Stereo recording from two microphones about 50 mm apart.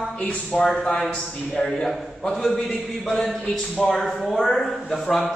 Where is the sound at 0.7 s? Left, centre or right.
Centre.